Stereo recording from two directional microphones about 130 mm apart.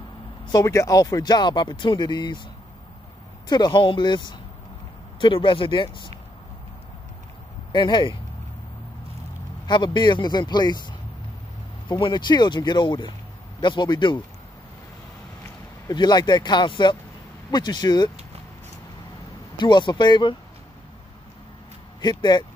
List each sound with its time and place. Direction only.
0.5 s speech: 25° left (ahead or behind)
3.4 s speech: 35° left (ahead or behind)
7.7 s speech: 35° left (ahead or behind)
9.7 s speech: 35° left (ahead or behind)
15.9 s speech: 35° left (ahead or behind)
19.6 s speech: 35° left (ahead or behind)
22.0 s speech: 35° left (ahead or behind)